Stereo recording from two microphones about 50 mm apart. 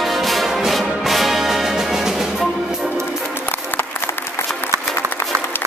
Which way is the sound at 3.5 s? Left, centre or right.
Left.